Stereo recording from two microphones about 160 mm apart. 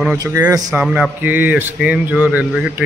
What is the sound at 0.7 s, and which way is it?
Speech, 5° right (ahead or behind).